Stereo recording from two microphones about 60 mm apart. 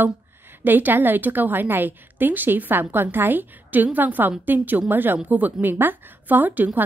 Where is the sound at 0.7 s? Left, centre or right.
Right.